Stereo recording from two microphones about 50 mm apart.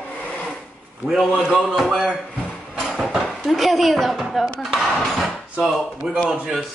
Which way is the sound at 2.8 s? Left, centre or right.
Centre.